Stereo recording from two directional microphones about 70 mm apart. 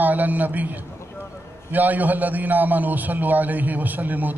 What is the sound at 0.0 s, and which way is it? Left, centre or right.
A man's voice, right.